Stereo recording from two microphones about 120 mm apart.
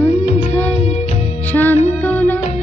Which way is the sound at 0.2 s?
55° left (ahead or behind).